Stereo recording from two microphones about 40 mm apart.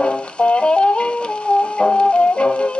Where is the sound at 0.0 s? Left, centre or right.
Left.